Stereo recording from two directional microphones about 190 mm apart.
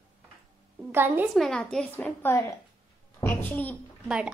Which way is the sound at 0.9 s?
10° right (ahead or behind).